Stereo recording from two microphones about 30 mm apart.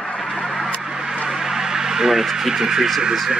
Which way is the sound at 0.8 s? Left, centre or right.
Right.